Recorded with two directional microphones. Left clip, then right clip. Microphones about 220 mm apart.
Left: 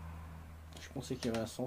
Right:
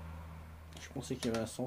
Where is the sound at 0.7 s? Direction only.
Centre (ahead or behind).